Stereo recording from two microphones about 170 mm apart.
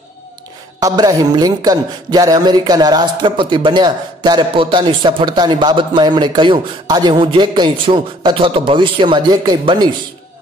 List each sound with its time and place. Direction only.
0.7 s a man's voice: 20° right (ahead or behind)